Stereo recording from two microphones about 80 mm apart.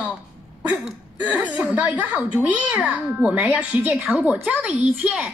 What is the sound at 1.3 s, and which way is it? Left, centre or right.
A child's voice, centre.